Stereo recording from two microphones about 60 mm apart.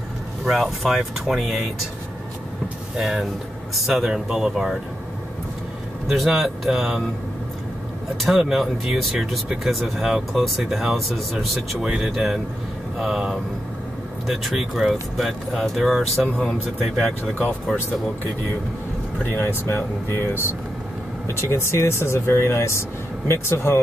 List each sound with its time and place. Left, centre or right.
0.5 s speech: centre
3.0 s speech: centre
6.0 s speech: centre
8.2 s speech: centre
11.3 s speech: centre
14.2 s speech: centre
19.3 s speech: left